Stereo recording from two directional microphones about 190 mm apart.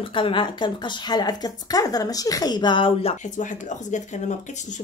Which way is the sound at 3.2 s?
40° left (ahead or behind).